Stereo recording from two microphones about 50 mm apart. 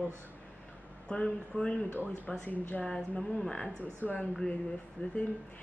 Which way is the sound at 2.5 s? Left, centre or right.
Left.